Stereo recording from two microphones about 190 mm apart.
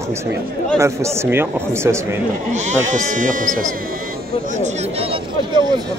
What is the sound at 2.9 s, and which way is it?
Speech, 40° right (ahead or behind).